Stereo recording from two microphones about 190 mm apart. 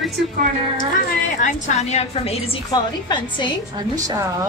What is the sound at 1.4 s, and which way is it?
Speech, 35° left (ahead or behind).